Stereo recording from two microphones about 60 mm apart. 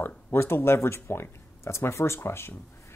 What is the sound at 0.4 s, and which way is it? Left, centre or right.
Speech, left.